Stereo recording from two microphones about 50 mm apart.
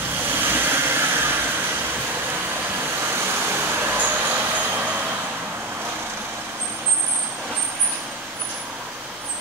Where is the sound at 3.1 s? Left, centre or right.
Right.